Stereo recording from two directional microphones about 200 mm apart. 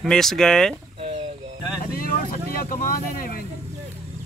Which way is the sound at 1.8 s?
45° left (ahead or behind).